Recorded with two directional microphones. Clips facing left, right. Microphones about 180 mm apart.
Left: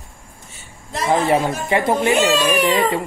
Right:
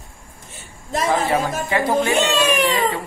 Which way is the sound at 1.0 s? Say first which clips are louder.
Left 3 dB; 25° left (ahead or behind).